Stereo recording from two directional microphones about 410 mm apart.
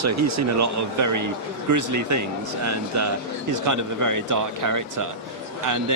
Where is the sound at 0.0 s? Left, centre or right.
Right.